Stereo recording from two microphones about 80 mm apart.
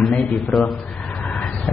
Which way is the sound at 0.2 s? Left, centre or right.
Centre.